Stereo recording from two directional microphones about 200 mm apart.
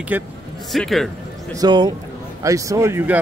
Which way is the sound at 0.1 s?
10° right (ahead or behind).